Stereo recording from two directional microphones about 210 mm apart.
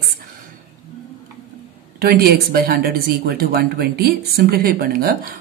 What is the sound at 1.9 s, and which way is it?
Speech, 45° right (ahead or behind).